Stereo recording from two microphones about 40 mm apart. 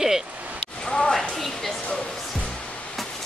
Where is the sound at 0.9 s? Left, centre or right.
Centre.